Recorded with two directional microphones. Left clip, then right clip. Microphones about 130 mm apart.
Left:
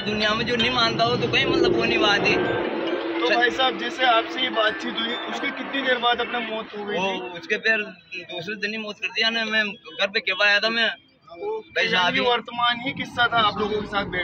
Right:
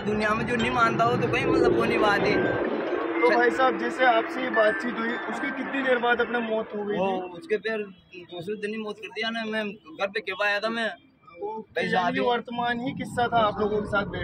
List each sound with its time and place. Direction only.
0.1 s speech: 10° left (ahead or behind); by 2.3 s 25° left (ahead or behind)
3.2 s speech: 10° left (ahead or behind)
5.9 s a man's voice: 15° right (ahead or behind)
12.3 s speech: 35° right (ahead or behind)